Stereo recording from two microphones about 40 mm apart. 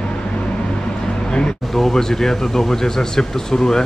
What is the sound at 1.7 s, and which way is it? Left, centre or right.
Speech, centre.